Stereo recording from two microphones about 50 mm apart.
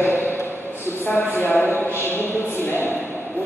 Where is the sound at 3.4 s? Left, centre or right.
Right.